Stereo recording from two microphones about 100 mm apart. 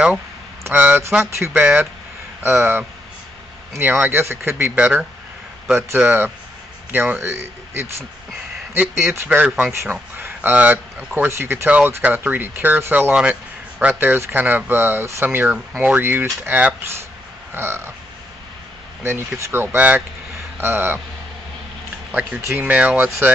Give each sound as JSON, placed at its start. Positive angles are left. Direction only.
{"t": 0.7, "sound": "speech", "side_deg": -20}
{"t": 11.2, "sound": "speech", "side_deg": -25}
{"t": 19.0, "sound": "speech", "side_deg": -25}
{"t": 22.6, "sound": "speech", "side_deg": -15}